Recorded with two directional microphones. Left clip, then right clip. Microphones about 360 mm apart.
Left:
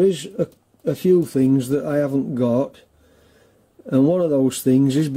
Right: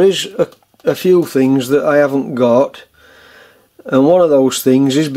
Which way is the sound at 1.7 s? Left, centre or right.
Centre.